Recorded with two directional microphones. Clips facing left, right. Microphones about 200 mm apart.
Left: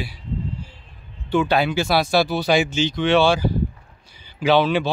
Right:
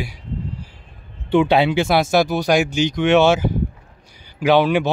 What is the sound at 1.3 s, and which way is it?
Speech, 25° right (ahead or behind).